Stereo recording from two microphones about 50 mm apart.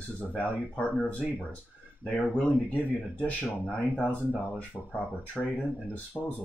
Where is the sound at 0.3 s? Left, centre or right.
Left.